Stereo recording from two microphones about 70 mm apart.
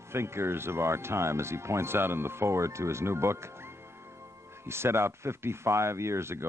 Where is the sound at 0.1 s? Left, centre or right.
Right.